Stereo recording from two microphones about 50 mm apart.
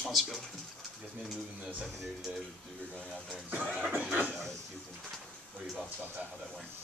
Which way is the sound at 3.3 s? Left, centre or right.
Right.